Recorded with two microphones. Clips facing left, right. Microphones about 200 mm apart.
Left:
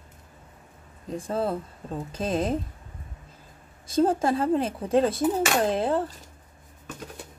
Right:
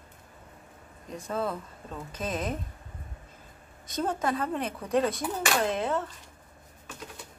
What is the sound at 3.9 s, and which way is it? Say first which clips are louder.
Speech: left 7 dB; 30° left (ahead or behind).